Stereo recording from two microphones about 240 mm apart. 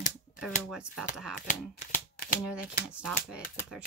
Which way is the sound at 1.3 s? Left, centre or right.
Left.